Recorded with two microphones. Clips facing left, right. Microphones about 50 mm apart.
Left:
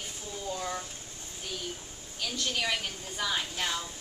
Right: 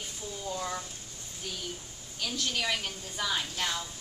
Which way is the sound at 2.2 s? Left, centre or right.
Centre.